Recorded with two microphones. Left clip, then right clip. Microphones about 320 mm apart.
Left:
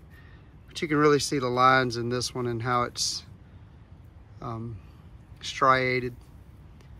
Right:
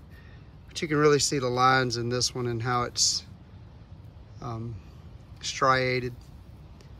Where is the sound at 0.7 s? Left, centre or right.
Centre.